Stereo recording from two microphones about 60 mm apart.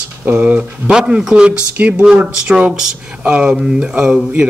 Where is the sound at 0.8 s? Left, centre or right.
Centre.